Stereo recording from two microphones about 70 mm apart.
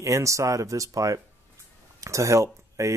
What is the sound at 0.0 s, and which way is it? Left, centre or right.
Speech, right.